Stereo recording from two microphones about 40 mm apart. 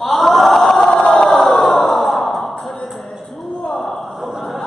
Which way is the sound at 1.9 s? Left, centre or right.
Centre.